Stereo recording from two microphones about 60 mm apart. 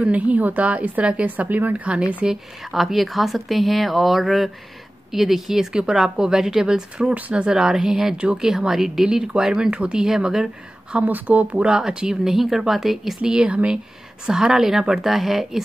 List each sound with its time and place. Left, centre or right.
0.0 s a woman's voice: right
2.7 s a woman's voice: centre
9.0 s speech: centre
10.9 s a woman's voice: right
11.7 s speech: centre